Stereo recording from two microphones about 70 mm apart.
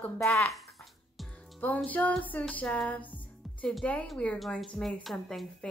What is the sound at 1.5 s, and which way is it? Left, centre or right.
Music, left.